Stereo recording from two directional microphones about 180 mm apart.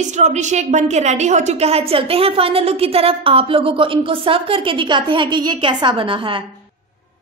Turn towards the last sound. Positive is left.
turn(degrees=-30)  # may be behind; listen again after turning